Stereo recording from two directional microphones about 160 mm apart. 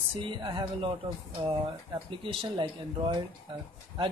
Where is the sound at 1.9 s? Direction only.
30° right (ahead or behind).